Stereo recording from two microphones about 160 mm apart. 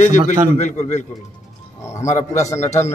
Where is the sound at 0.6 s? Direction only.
45° left (ahead or behind).